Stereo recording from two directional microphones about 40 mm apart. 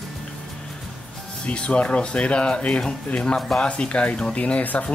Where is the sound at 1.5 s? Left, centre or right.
Left.